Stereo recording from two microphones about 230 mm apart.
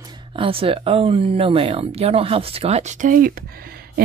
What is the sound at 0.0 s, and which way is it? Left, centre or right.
Speech, right.